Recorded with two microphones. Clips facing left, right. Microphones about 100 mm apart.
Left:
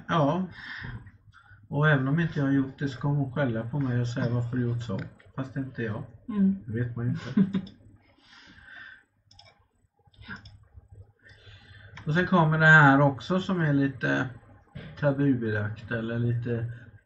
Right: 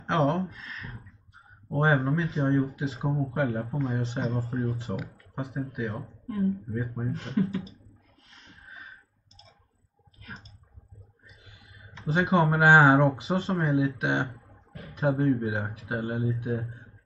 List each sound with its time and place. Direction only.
0.0 s a sound: centre (ahead or behind)
1.8 s speech: centre (ahead or behind)
6.7 s speech: 5° right (ahead or behind)
8.3 s a sound: centre (ahead or behind)
10.2 s a sound: 10° left (ahead or behind)
11.4 s a sound: centre (ahead or behind)
12.1 s speech: centre (ahead or behind)
12.5 s speech: 15° right (ahead or behind)
12.8 s speech: centre (ahead or behind)
13.9 s speech: 15° right (ahead or behind)
15.0 s speech: centre (ahead or behind)
16.3 s speech: 10° right (ahead or behind)